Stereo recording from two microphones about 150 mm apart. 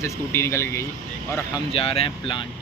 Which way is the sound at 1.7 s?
40° left (ahead or behind).